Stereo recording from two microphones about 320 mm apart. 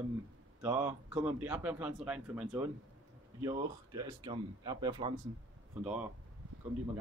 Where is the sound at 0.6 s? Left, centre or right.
Centre.